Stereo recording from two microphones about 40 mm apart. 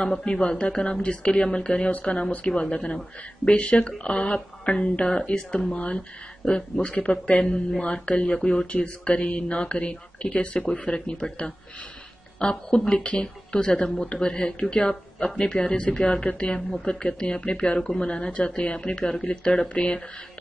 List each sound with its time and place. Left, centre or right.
0.2 s speech: left
1.9 s speech: left
6.9 s speech: left